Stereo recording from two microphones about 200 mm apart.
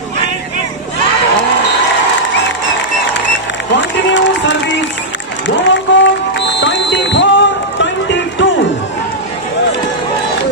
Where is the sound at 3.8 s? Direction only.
65° left (ahead or behind).